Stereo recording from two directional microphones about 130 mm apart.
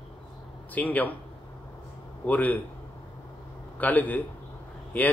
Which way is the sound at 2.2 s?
15° left (ahead or behind).